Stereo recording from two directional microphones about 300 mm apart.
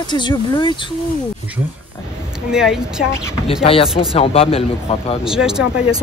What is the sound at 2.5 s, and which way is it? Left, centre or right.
Speech, centre.